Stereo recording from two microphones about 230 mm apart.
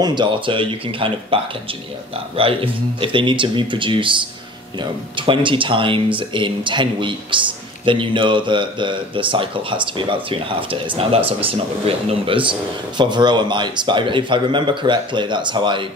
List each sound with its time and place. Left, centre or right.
0.0 s speech: centre